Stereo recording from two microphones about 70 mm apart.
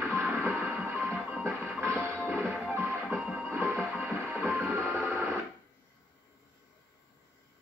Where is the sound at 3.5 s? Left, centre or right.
Right.